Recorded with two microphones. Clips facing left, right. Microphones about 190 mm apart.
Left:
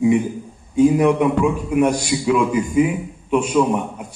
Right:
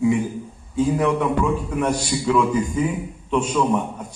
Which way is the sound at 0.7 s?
15° left (ahead or behind).